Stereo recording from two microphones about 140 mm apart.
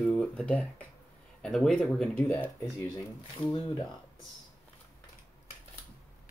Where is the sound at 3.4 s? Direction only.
30° left (ahead or behind).